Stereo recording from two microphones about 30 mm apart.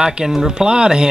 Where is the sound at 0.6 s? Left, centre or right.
Right.